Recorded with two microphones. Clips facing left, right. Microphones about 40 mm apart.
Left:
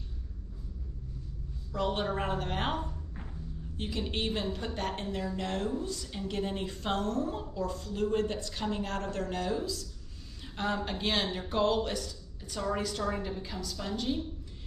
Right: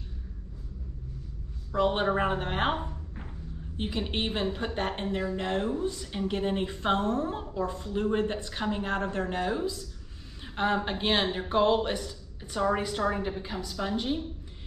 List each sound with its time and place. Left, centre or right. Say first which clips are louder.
1.8 s a woman's voice: right 6 dB; right